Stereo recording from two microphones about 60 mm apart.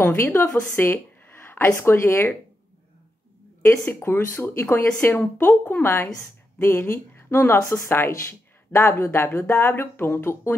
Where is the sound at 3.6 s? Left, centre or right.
Left.